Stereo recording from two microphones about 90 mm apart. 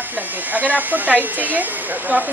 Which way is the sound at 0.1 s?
20° right (ahead or behind).